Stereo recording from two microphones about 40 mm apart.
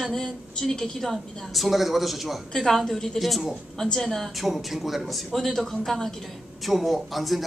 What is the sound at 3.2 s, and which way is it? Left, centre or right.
Speech, centre.